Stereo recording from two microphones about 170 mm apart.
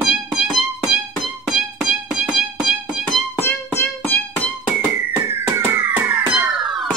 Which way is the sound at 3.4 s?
10° left (ahead or behind).